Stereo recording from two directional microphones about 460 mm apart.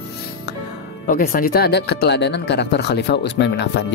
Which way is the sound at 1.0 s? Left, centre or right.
Centre.